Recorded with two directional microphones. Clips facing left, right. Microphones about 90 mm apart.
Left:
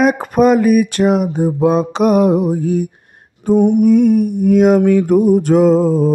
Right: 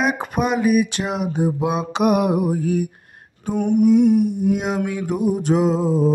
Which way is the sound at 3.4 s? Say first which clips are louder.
Left 10 dB; 35° left (ahead or behind).